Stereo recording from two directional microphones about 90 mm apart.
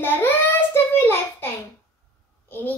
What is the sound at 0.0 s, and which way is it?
Child singing, 25° left (ahead or behind).